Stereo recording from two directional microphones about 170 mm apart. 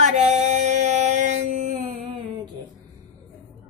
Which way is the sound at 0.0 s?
40° right (ahead or behind).